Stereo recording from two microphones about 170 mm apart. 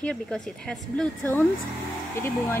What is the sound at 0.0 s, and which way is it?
A woman's voice, 5° left (ahead or behind).